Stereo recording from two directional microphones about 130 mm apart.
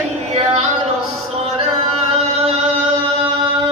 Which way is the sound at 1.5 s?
50° right (ahead or behind).